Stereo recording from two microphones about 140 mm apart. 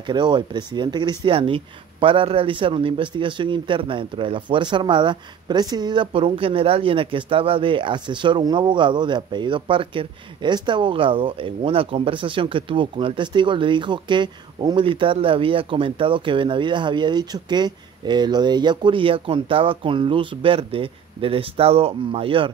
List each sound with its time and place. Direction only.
0.0 s speech: 35° right (ahead or behind)